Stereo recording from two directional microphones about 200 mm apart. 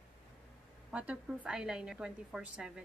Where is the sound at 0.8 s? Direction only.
5° right (ahead or behind).